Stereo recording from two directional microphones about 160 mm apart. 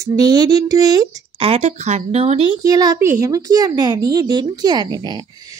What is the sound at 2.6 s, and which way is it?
Speech, 25° right (ahead or behind).